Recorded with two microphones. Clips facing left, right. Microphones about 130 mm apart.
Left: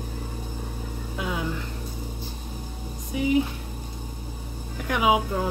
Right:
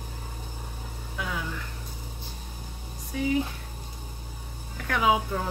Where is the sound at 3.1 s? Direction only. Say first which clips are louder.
Left 3 dB; 15° left (ahead or behind).